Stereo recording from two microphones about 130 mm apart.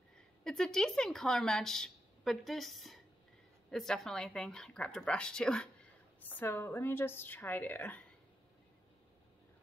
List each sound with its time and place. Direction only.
0.4 s a woman's voice: 5° left (ahead or behind)